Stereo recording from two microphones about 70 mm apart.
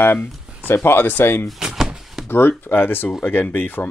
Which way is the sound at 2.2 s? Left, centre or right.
Left.